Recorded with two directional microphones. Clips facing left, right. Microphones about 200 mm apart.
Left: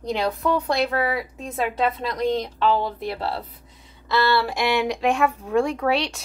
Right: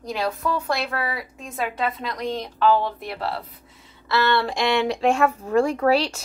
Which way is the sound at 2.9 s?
30° left (ahead or behind).